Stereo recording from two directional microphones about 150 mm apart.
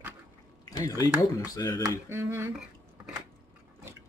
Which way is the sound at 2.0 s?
15° right (ahead or behind).